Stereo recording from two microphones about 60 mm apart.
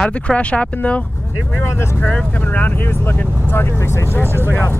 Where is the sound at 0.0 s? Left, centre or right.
Centre.